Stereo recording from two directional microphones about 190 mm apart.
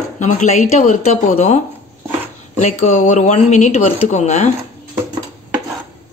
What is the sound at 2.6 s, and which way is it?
Speech, 40° left (ahead or behind).